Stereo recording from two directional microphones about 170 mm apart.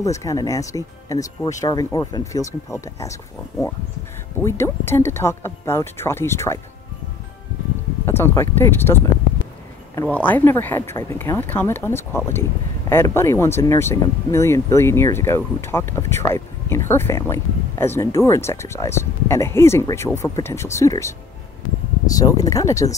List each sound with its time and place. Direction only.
0.0 s speech: 20° left (ahead or behind)
4.4 s speech: 15° left (ahead or behind)
8.0 s speech: 15° left (ahead or behind)
22.1 s speech: 20° left (ahead or behind)